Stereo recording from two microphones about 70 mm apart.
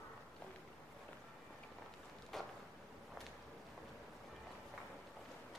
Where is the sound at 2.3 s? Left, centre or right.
Centre.